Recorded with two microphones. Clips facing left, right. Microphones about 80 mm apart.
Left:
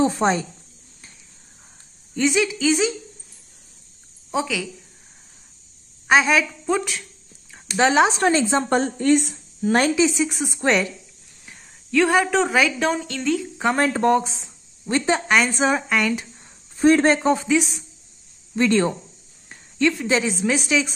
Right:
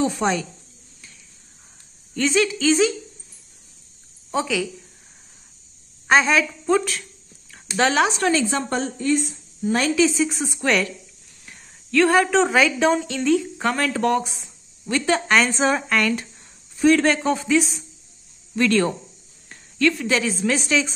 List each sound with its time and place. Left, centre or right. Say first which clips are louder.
0.0 s speech: left 2 dB; left
2.1 s a woman's voice: even; centre
4.3 s speech: right 1 dB; centre
6.0 s a woman's voice: even; centre
8.2 s speech: left 2 dB; left
8.6 s speech: left 4 dB; left
9.9 s a woman's voice: right 1 dB; centre
10.5 s speech: left 3 dB; left
11.4 s speech: even; centre
13.7 s speech: left 3 dB; left
14.4 s a sound: left 1 dB; left
15.1 s a woman's voice: even; centre
16.7 s speech: left 1 dB; left
18.6 s speech: even; left; by 20.9 s centre